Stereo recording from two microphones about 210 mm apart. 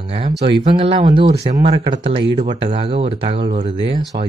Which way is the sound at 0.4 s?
25° right (ahead or behind).